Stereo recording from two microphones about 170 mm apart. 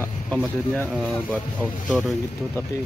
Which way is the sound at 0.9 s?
5° left (ahead or behind).